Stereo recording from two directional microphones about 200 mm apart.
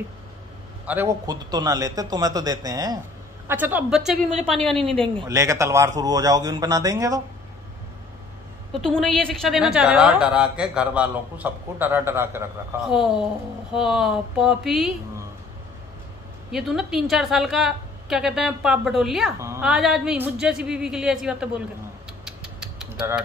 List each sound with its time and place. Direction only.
0.8 s a man's voice: 10° right (ahead or behind); by 5.2 s 5° left (ahead or behind)
5.2 s a man's voice: 15° right (ahead or behind)
8.7 s a woman's voice: centre (ahead or behind)
16.5 s a woman's voice: centre (ahead or behind)
22.2 s a sound: 5° right (ahead or behind)